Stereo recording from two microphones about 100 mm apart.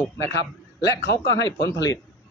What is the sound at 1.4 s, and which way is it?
Speech, 35° left (ahead or behind).